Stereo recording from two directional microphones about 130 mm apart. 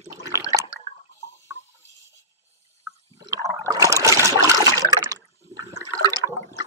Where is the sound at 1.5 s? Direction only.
20° right (ahead or behind).